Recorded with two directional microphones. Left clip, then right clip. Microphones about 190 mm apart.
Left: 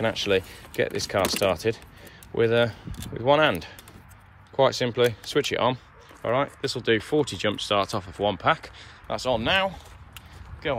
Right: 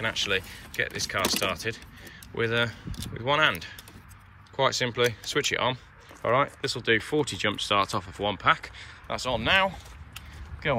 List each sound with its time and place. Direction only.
0.0 s speech: 25° left (ahead or behind)